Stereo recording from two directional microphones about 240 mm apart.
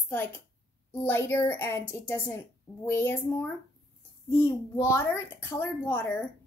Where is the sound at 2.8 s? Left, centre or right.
Centre.